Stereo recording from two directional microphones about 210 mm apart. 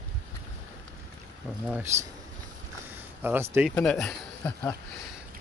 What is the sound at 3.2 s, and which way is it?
Speech, 10° right (ahead or behind).